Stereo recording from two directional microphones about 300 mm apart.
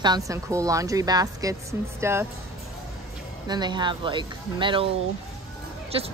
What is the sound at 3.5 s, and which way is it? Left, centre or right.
Speech, centre.